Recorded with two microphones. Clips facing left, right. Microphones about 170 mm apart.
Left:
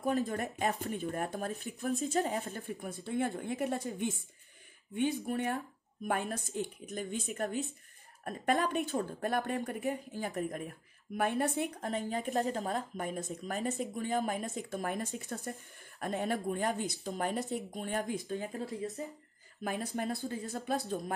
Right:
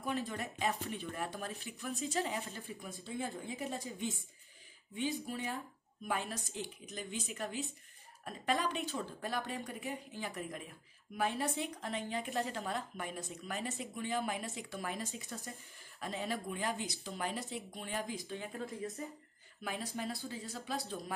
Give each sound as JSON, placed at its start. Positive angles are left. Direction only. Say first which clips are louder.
{"t": 0.0, "sound": "speech", "louder": "left 6 dB", "side_deg": 40}
{"t": 19.6, "sound": "speech", "louder": "left 5 dB", "side_deg": 50}